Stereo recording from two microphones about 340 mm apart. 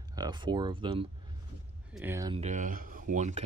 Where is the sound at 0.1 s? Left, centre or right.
Centre.